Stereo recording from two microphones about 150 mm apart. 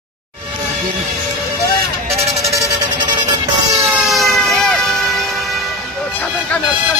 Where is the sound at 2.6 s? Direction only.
25° right (ahead or behind).